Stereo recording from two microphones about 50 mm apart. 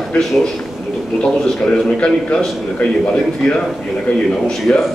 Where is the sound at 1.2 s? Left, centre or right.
Centre.